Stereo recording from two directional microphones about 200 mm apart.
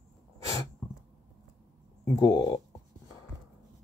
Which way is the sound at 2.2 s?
20° left (ahead or behind).